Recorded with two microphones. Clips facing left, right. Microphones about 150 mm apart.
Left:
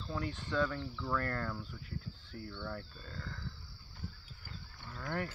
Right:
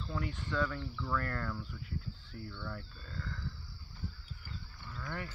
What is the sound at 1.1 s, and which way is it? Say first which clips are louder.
Speech: left 1 dB; 30° left (ahead or behind).